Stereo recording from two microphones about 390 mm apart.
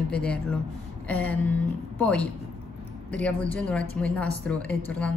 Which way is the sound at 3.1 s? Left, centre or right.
Centre.